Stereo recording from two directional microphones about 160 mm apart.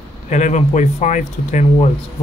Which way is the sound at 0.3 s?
45° left (ahead or behind).